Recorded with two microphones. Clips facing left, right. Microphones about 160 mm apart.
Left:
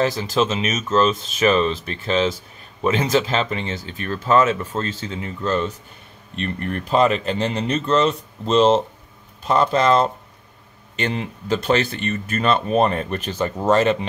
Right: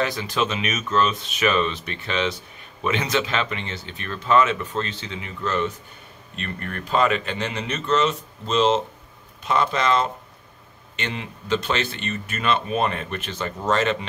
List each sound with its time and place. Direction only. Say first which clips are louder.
0.0 s speech: left 4 dB; 35° left (ahead or behind)